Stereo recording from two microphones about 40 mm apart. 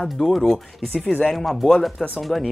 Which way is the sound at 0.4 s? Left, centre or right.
Centre.